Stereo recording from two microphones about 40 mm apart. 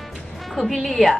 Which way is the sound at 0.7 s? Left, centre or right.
Centre.